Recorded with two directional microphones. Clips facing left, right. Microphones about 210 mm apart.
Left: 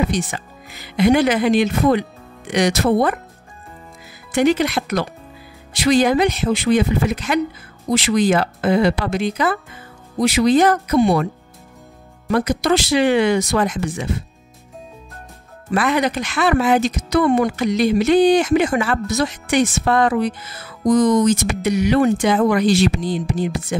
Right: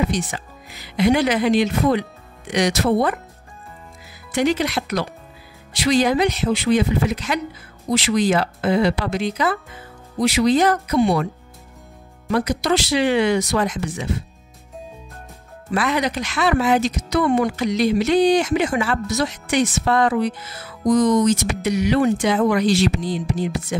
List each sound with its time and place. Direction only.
0.1 s speech: 55° left (ahead or behind)
4.3 s speech: 55° left (ahead or behind)
12.3 s speech: 50° left (ahead or behind)
15.7 s speech: 50° left (ahead or behind)